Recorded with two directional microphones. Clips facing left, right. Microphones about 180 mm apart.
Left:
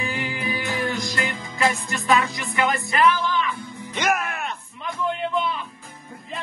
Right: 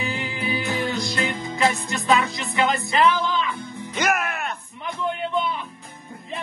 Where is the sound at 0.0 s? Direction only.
25° right (ahead or behind).